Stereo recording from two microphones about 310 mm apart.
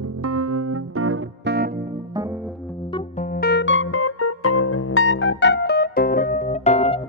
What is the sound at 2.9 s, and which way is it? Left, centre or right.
Music, left.